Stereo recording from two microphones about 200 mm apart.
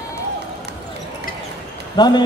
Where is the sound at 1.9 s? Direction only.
20° left (ahead or behind).